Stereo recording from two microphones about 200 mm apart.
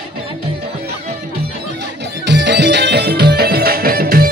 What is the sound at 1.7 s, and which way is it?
Music, 60° right (ahead or behind).